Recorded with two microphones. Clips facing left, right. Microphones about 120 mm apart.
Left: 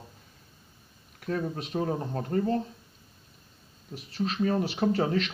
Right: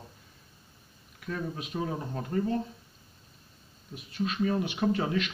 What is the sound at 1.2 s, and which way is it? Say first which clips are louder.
Speech: left 4 dB; 40° left (ahead or behind).